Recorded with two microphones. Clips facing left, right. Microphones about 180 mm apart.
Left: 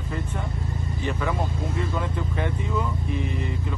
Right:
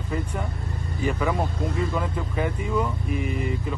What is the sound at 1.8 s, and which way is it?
Speech, centre (ahead or behind).